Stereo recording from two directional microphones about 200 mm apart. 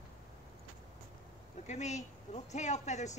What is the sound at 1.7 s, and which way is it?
Speech, 35° left (ahead or behind).